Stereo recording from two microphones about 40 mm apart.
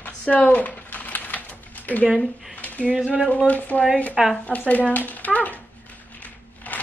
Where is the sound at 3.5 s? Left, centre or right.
Left.